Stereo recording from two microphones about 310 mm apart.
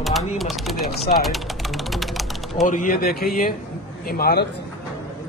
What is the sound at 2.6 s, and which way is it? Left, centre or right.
A man's voice, left.